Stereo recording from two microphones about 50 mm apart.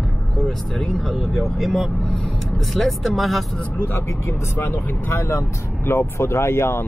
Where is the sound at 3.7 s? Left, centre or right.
Left.